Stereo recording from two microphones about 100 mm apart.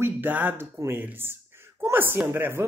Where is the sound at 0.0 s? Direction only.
20° right (ahead or behind).